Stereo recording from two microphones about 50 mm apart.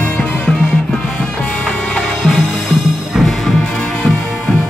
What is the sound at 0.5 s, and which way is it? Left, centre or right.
Music, centre.